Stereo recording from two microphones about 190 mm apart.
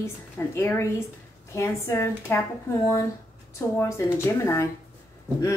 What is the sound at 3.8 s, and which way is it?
Speech, 15° left (ahead or behind).